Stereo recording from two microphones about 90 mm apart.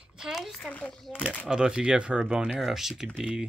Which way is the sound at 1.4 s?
5° right (ahead or behind).